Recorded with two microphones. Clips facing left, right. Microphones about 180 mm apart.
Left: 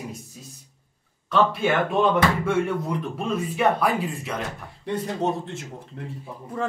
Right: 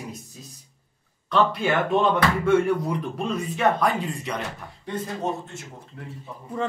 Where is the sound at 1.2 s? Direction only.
Centre (ahead or behind).